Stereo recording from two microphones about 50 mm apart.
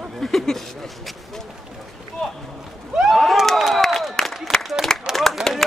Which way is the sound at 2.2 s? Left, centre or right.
Centre.